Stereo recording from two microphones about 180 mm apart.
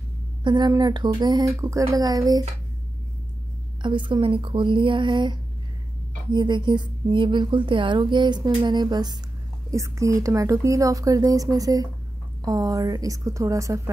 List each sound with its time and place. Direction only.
0.4 s speech: 25° right (ahead or behind)
3.8 s speech: 25° right (ahead or behind)